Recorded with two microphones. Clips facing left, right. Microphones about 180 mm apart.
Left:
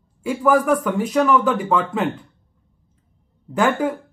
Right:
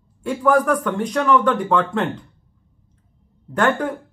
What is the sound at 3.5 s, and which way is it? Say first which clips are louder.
Speech: left 1 dB; 5° left (ahead or behind).